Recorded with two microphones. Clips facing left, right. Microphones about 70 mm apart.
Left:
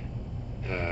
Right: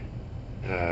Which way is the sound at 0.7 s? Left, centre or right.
Right.